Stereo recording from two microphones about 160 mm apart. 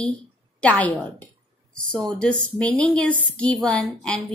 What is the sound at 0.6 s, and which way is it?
Speech, 10° left (ahead or behind).